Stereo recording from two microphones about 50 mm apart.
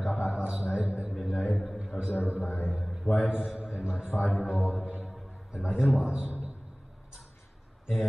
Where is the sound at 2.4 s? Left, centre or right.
Left.